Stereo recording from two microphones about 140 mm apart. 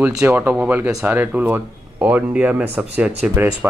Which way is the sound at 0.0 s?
15° right (ahead or behind).